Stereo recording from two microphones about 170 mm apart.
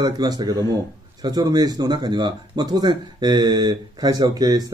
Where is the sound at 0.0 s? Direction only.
25° right (ahead or behind).